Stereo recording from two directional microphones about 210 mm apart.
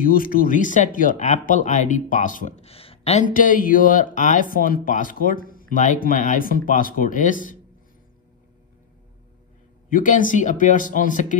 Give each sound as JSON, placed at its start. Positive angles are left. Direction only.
{"t": 0.0, "sound": "speech", "side_deg": 40}
{"t": 9.8, "sound": "speech", "side_deg": 40}